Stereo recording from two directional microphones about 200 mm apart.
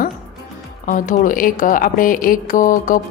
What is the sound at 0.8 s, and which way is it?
A woman's voice, 45° left (ahead or behind).